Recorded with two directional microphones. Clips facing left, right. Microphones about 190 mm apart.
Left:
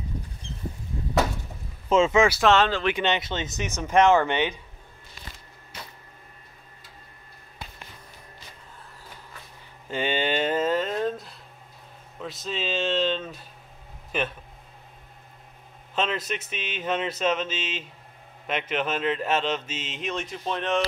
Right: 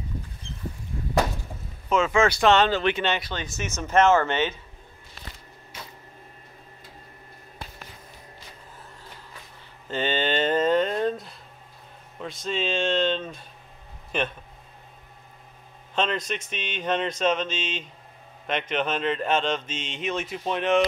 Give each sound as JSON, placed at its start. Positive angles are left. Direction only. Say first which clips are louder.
{"t": 1.9, "sound": "speech", "louder": "left 2 dB", "side_deg": 25}
{"t": 2.2, "sound": "speech", "louder": "right 1 dB", "side_deg": 5}
{"t": 2.9, "sound": "speech", "louder": "left 1 dB", "side_deg": 15}
{"t": 9.8, "sound": "speech", "louder": "even", "side_deg": 10}
{"t": 15.9, "sound": "speech", "louder": "right 1 dB", "side_deg": 5}